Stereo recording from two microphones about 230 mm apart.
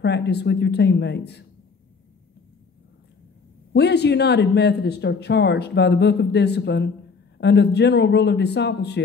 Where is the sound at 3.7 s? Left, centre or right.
Left.